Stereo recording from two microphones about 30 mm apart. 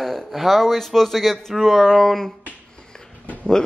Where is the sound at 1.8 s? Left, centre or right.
Centre.